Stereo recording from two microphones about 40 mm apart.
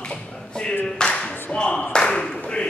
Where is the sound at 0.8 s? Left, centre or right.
Left.